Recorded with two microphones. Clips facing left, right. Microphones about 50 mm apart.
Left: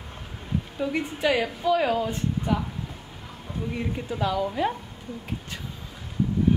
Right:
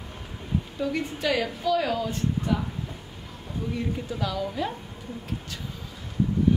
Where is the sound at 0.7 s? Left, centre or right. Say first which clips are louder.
Left 2 dB; centre.